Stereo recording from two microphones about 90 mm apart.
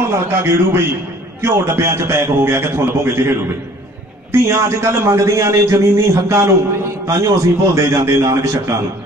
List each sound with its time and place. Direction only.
0.1 s a man's voice: 30° right (ahead or behind)